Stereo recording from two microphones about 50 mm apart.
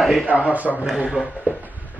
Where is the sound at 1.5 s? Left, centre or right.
Right.